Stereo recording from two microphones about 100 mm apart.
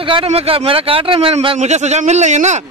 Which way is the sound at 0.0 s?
70° right (ahead or behind).